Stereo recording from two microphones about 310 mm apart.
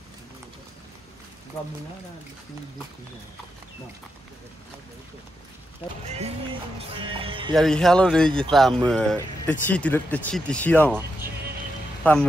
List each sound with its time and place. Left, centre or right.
6.0 s speech: right
7.5 s speech: centre
12.0 s speech: centre